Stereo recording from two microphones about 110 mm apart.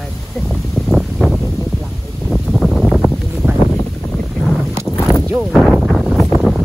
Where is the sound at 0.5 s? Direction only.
Centre (ahead or behind).